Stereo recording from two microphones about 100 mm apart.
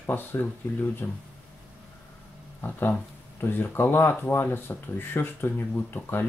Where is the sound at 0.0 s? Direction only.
20° left (ahead or behind).